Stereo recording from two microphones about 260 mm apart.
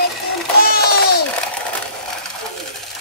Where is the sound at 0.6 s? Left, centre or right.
Left.